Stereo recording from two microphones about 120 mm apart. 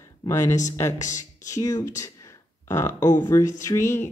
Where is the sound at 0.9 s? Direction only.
90° left.